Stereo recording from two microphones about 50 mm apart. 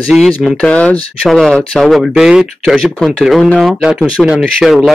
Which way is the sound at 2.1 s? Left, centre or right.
Centre.